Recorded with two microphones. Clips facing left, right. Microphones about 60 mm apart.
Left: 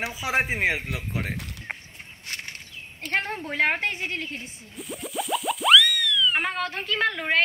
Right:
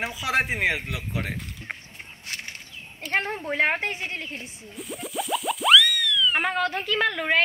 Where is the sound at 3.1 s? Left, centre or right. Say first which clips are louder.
Right 1 dB; right.